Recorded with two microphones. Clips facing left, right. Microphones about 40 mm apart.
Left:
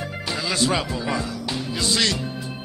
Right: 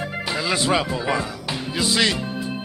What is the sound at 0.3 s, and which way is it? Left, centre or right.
Speech, centre.